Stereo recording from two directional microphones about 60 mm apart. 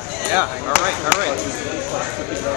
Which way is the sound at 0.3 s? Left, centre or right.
Right.